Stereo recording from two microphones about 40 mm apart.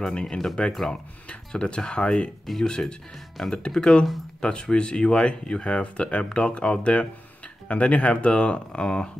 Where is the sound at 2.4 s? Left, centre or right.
Centre.